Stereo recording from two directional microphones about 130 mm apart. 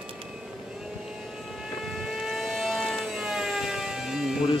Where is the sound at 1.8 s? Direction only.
Centre (ahead or behind).